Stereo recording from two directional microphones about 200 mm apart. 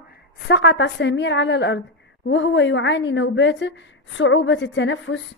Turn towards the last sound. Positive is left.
turn(degrees=70)  # may be behind; listen again after turning